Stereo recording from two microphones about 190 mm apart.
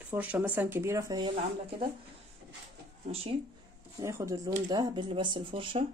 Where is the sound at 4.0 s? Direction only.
15° right (ahead or behind).